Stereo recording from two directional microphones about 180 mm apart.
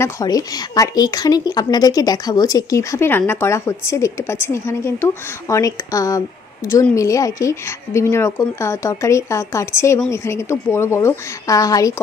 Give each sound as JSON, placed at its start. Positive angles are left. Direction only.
{"t": 0.0, "sound": "a woman's voice", "side_deg": 20}